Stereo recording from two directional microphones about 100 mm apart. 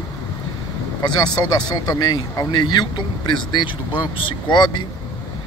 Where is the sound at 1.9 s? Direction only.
40° left (ahead or behind).